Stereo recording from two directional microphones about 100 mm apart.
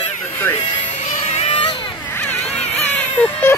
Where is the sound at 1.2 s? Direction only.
90° left.